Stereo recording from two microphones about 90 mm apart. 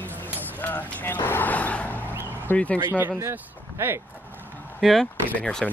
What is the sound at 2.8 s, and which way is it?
Speech, 25° right (ahead or behind).